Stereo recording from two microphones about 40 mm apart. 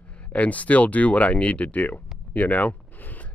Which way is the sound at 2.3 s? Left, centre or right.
Left.